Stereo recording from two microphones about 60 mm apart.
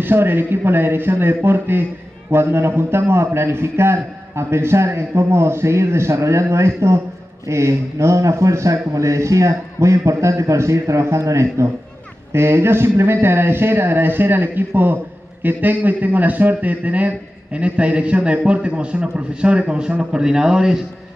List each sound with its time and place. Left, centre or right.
0.0 s a man's voice: right; by 20.8 s centre